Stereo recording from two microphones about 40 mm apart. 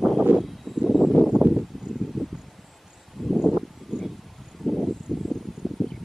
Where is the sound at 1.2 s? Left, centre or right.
Centre.